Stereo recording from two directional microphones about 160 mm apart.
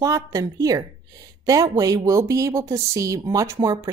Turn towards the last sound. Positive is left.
turn(degrees=-20)  # may be behind; listen again after turning